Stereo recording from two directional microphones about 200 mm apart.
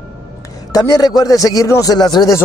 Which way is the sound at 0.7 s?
20° left (ahead or behind).